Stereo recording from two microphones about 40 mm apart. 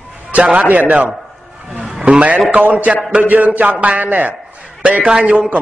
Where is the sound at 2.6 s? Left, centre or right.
Right.